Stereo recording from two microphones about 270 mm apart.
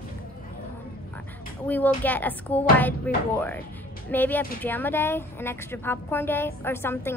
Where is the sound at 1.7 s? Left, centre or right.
Centre.